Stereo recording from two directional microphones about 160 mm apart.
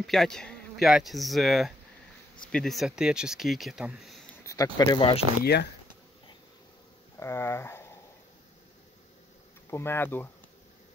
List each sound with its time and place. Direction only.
0.0 s speech: centre (ahead or behind)
4.4 s a sound: 20° left (ahead or behind)
4.7 s speech: 30° left (ahead or behind)
5.4 s speech: 90° left
7.2 s a sound: 15° left (ahead or behind)
9.7 s speech: 15° left (ahead or behind)